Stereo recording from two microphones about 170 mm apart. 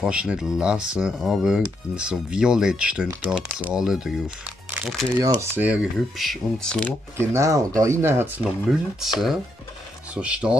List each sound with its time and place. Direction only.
0.0 s speech: 5° right (ahead or behind)
5.2 s speech: 15° right (ahead or behind); by 6.9 s 5° left (ahead or behind)
7.2 s speech: 20° right (ahead or behind)
10.1 s speech: 5° right (ahead or behind)